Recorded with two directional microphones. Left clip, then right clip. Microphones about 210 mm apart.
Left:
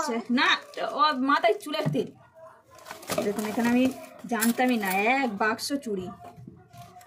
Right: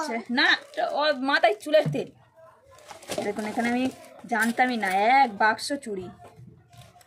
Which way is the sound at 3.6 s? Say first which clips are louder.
Left 2 dB; 35° right (ahead or behind).